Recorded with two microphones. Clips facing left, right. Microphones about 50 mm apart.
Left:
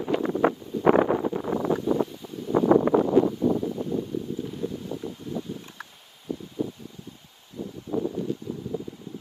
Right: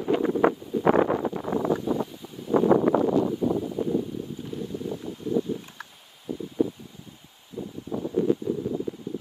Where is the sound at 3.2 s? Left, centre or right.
Left.